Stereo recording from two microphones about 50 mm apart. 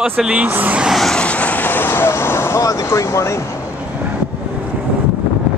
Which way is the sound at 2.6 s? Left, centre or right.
Left.